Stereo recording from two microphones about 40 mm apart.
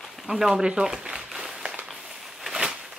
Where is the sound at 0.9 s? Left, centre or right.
Right.